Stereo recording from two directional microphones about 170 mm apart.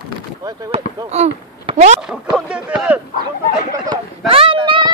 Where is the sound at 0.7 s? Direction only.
35° right (ahead or behind).